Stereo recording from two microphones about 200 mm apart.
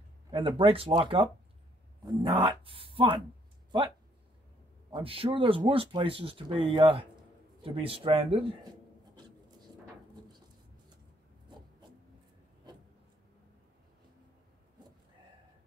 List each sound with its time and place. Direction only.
0.3 s speech: 25° right (ahead or behind)
4.9 s speech: 30° right (ahead or behind)